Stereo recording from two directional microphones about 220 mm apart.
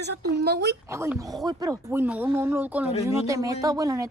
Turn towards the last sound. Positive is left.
turn(degrees=-15)  # may be behind; listen again after turning